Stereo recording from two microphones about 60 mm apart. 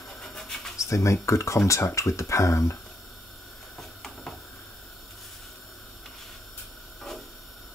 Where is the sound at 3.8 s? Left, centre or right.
Centre.